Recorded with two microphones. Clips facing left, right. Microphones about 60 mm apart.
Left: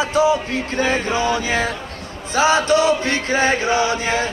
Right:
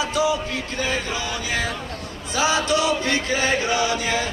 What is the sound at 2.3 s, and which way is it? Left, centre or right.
Music, left.